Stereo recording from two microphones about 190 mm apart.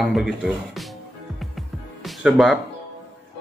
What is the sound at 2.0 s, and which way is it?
Speech, centre (ahead or behind).